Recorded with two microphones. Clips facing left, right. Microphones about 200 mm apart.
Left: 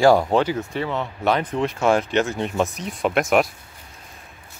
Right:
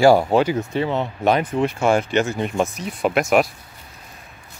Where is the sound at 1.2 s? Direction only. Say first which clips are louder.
Right 2 dB; 15° right (ahead or behind).